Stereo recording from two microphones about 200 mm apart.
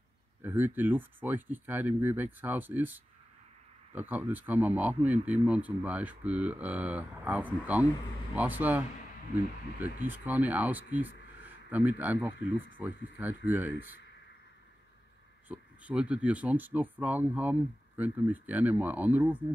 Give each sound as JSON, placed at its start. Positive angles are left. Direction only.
{"t": 0.4, "sound": "speech", "side_deg": -10}
{"t": 9.9, "sound": "speech", "side_deg": -10}
{"t": 15.4, "sound": "speech", "side_deg": -5}